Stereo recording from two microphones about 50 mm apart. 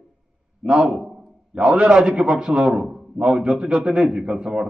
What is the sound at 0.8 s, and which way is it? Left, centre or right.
Speech, centre.